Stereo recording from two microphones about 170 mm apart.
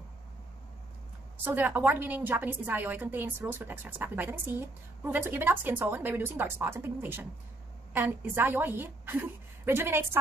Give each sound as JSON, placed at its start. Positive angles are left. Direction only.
{"t": 1.4, "sound": "a woman's voice", "side_deg": -10}